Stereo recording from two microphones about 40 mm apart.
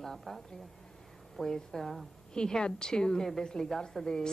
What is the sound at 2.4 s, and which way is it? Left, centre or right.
A woman's voice, centre.